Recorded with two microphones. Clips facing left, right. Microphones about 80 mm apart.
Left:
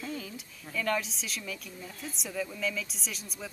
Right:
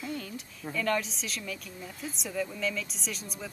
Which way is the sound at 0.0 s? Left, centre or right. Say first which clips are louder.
Right 1 dB; centre.